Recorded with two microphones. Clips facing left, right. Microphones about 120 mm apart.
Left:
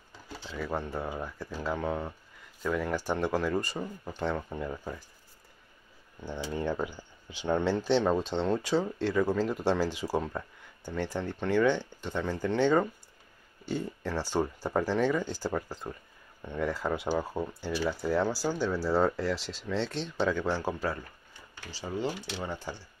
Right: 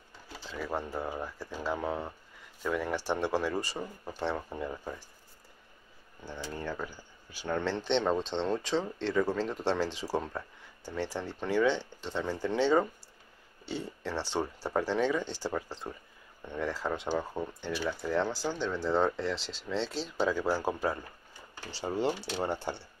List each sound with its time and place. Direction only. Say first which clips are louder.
0.5 s speech: left 1 dB; centre (ahead or behind)
6.2 s speech: left 5 dB; 20° left (ahead or behind)
7.7 s speech: left 1 dB; 5° left (ahead or behind)
14.3 s speech: left 3 dB; centre (ahead or behind); by 21.0 s 15° right (ahead or behind)
21.5 s speech: right 2 dB; 30° right (ahead or behind)